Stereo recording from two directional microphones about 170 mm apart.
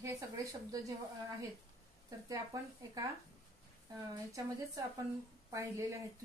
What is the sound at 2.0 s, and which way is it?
Speech, 20° right (ahead or behind).